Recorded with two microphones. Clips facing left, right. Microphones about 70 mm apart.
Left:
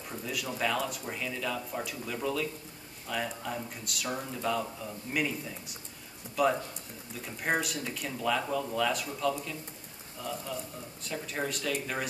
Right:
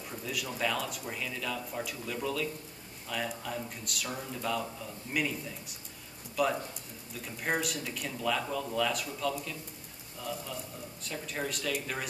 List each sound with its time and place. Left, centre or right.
0.1 s speech: centre
11.0 s speech: centre